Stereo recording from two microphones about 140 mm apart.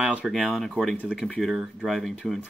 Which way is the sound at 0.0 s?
5° right (ahead or behind).